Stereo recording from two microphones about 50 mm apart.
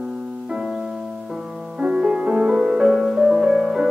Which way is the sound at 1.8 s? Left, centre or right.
Right.